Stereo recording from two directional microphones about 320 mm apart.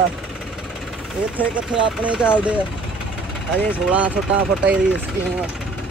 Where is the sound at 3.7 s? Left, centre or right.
Centre.